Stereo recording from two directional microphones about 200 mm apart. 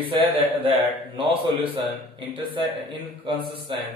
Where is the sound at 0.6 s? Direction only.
25° right (ahead or behind).